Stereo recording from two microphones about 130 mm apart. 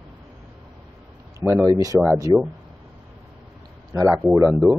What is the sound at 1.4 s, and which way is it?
Speech, centre (ahead or behind).